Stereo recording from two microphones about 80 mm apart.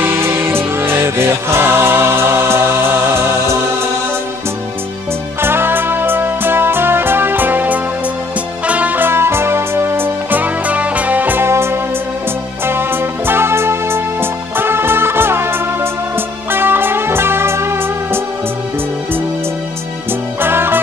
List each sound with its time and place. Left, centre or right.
0.0 s music: right
5.4 s music: right
20.4 s music: right